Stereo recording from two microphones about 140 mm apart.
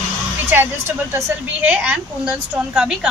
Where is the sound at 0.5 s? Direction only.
10° right (ahead or behind).